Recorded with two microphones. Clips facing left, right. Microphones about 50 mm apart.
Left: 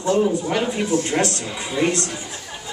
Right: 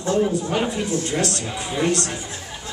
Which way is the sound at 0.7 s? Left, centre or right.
Left.